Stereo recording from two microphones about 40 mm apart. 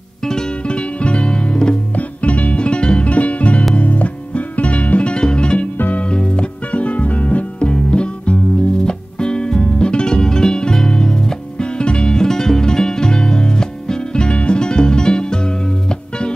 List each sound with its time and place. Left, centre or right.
0.2 s music: centre
0.7 s music: left
2.0 s music: left
5.8 s music: left
6.0 s music: left
7.7 s music: left